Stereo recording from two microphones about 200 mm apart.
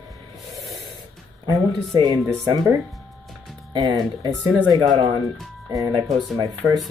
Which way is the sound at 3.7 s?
20° right (ahead or behind).